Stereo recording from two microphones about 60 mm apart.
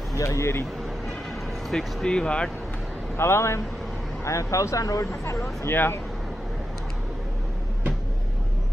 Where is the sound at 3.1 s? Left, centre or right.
Left.